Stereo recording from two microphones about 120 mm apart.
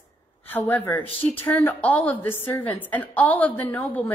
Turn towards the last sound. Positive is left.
turn(degrees=15)  # may be behind; listen again after turning